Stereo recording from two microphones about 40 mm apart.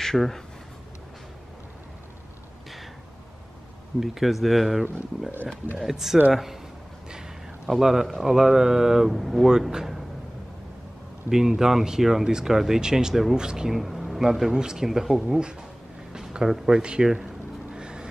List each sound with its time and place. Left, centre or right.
0.0 s speech: centre
4.0 s speech: centre
7.1 s a sound: centre
7.7 s speech: centre
9.5 s speech: centre
11.2 s speech: centre
13.7 s speech: centre
14.5 s speech: centre
16.1 s a sound: centre
16.8 s speech: right
17.7 s vehicle: right